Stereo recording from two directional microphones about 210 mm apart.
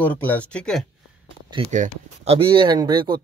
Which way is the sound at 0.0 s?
10° left (ahead or behind).